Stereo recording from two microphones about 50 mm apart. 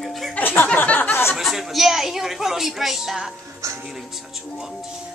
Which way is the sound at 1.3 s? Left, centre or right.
Centre.